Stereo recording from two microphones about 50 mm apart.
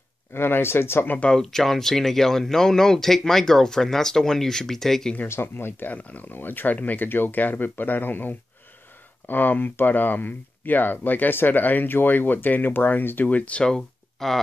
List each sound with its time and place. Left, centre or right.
0.3 s speech: left
1.3 s speech: centre
5.3 s speech: left
5.9 s speech: left
13.7 s speech: centre